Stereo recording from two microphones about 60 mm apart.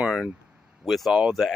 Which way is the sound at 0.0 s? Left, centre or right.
Centre.